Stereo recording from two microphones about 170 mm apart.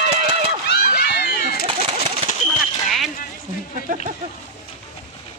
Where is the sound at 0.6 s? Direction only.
70° left (ahead or behind).